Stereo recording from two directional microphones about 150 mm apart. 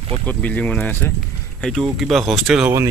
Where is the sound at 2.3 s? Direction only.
Centre (ahead or behind).